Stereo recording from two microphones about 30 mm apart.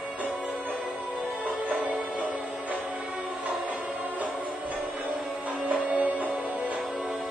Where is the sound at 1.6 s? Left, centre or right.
Right.